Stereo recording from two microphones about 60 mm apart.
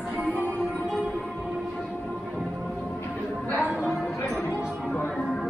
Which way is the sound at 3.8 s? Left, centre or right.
Centre.